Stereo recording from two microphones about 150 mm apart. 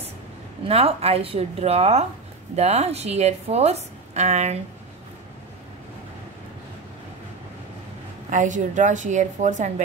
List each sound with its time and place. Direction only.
0.7 s a woman's voice: 40° right (ahead or behind)
8.3 s a woman's voice: 55° right (ahead or behind)